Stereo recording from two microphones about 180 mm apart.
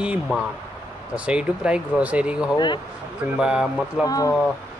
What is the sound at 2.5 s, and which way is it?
Speech, 25° left (ahead or behind).